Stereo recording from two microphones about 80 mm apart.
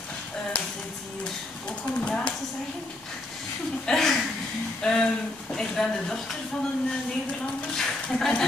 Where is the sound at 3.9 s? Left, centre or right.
Centre.